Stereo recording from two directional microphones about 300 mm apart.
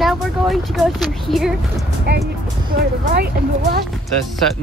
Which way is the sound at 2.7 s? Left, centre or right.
Right.